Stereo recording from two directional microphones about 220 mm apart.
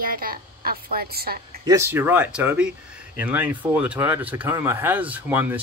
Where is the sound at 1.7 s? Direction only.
10° right (ahead or behind).